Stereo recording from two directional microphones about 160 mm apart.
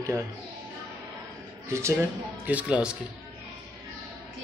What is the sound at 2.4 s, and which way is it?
Speech, 10° right (ahead or behind).